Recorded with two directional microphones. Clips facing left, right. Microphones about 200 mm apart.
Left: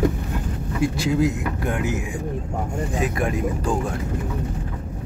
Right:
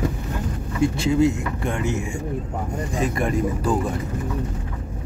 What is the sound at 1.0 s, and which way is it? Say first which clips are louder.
Speech: right 3 dB; centre (ahead or behind).